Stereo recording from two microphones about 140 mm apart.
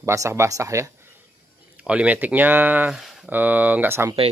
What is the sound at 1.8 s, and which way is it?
Speech, 10° right (ahead or behind).